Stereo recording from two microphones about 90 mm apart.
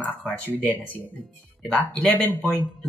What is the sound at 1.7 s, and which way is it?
Speech, 10° left (ahead or behind).